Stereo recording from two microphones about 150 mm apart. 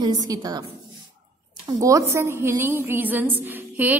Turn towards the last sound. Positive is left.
turn(degrees=-10)  # may be behind; listen again after turning